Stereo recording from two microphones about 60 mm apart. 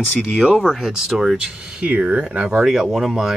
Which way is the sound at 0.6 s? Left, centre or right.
Centre.